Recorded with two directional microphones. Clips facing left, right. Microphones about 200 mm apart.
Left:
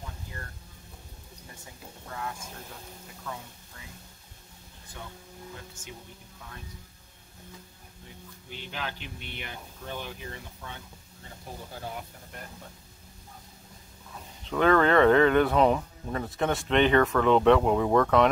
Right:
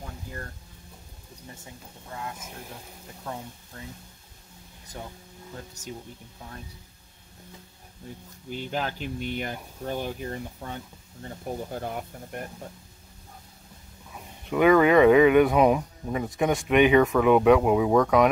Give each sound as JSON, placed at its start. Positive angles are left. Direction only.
{"t": 2.1, "sound": "speech", "side_deg": -20}
{"t": 5.8, "sound": "speech", "side_deg": -40}
{"t": 8.5, "sound": "speech", "side_deg": -45}
{"t": 14.1, "sound": "speech", "side_deg": -10}